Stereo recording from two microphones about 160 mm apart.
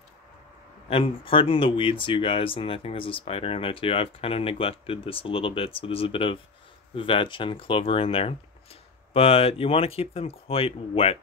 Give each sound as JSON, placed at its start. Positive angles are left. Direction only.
{"t": 0.8, "sound": "speech", "side_deg": 35}